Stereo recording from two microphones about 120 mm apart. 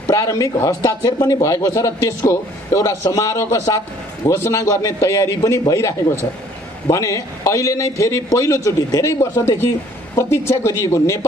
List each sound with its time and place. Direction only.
0.0 s a man's voice: 30° left (ahead or behind)